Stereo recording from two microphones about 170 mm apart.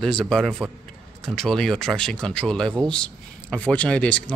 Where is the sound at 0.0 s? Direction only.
5° left (ahead or behind).